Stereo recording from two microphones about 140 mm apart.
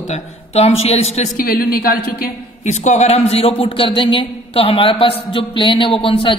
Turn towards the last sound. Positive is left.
turn(degrees=40)  # may be behind; listen again after turning